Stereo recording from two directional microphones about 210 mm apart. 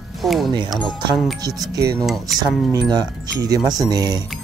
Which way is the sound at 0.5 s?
20° right (ahead or behind).